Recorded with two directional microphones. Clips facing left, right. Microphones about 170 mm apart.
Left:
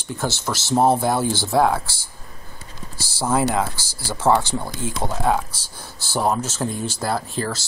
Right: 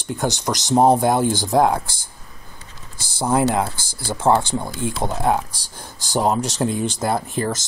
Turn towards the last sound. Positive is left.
turn(degrees=-20)  # may be behind; listen again after turning